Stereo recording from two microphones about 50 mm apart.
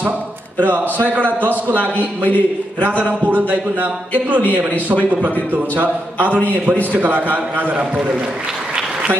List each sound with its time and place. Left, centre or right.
0.6 s a man's voice: right
1.8 s speech: left
3.1 s a man's voice: right
5.8 s a man's voice: right